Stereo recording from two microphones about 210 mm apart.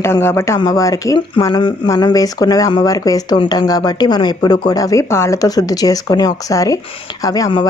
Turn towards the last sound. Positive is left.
turn(degrees=20)  # may be behind; listen again after turning